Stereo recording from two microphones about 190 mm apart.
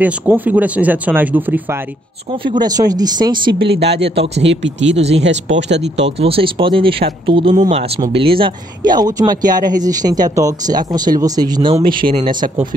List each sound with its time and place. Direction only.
0.0 s speech: 10° right (ahead or behind)
2.6 s speech: 20° right (ahead or behind)
3.5 s speech: 60° right (ahead or behind)
4.4 s speech: 75° right (ahead or behind)
4.9 s speech: 35° right (ahead or behind)
11.9 s speech: 50° right (ahead or behind)